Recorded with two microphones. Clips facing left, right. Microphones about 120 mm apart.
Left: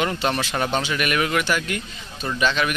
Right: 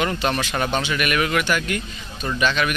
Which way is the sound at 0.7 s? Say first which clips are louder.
Right 1 dB; 35° left (ahead or behind).